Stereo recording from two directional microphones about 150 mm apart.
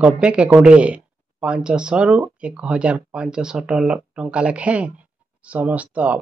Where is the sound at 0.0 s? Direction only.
5° right (ahead or behind).